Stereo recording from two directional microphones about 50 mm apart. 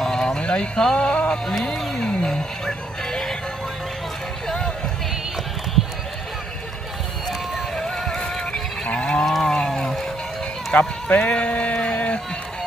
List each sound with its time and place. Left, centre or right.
0.0 s music: centre
1.5 s a sound: centre
4.5 s music: centre
7.2 s vehicle: centre
7.9 s music: centre
8.9 s cattle: centre
9.2 s livestock: centre
9.6 s music: centre
10.7 s sheep: left